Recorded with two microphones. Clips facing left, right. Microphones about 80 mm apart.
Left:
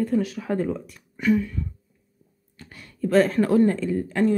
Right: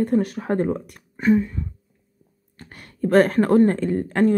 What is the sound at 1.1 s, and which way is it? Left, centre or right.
Speech, right.